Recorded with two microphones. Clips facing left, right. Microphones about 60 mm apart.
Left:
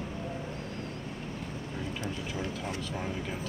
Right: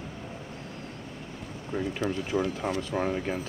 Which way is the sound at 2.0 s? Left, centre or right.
Right.